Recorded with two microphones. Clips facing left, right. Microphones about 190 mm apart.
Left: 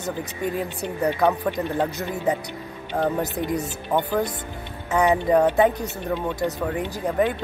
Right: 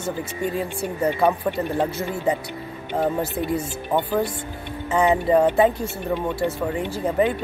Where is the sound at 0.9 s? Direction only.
5° right (ahead or behind).